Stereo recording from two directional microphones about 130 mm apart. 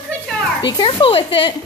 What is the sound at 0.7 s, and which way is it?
Speech, 40° left (ahead or behind).